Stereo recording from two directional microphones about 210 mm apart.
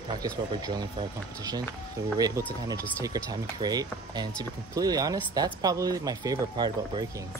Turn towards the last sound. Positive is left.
turn(degrees=-20)  # may be behind; listen again after turning